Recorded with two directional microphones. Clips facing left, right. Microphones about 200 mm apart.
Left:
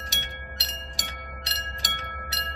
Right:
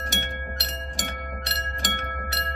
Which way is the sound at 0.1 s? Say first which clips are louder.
Right 8 dB; 55° right (ahead or behind).